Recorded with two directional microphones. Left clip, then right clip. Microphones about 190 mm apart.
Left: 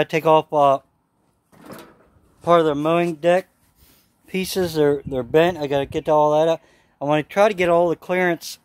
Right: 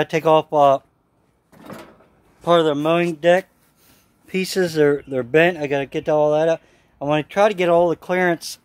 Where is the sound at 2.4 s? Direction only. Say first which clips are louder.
Even; 10° left (ahead or behind).